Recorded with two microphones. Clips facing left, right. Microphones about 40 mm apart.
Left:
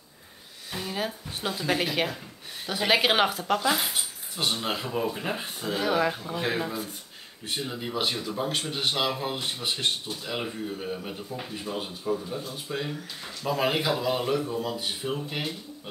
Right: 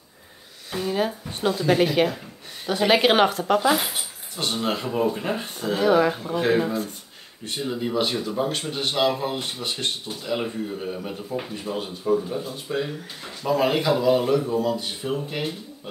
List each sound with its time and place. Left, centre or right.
0.7 s speech: centre
13.6 s speech: centre